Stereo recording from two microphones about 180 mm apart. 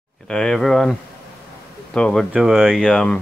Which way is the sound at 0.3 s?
5° left (ahead or behind).